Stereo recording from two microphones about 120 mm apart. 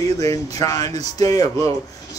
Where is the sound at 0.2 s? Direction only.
30° left (ahead or behind).